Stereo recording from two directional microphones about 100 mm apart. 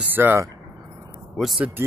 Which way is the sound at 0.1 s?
20° right (ahead or behind).